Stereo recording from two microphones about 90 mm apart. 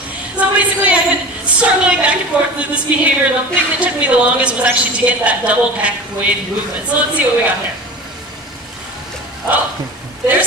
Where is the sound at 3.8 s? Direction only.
15° right (ahead or behind).